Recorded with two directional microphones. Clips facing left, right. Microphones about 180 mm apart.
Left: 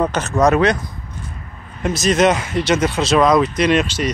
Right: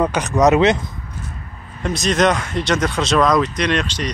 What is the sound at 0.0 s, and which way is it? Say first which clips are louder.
Speech: right 1 dB; 15° right (ahead or behind).